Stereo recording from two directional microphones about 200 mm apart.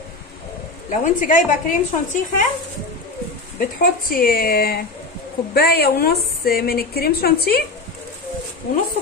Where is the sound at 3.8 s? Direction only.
45° left (ahead or behind).